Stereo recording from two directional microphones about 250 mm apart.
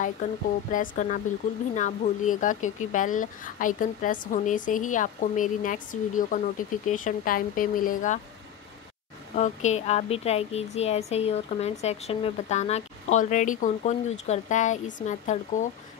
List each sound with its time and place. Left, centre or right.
0.0 s speech: left
9.3 s speech: left